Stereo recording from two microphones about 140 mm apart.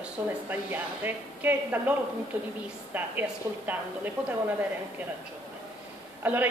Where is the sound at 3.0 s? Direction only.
15° right (ahead or behind).